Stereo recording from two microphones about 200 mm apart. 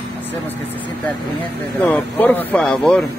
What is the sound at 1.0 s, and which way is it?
A man's voice, 10° left (ahead or behind).